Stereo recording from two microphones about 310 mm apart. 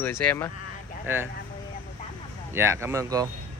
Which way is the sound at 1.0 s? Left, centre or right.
Centre.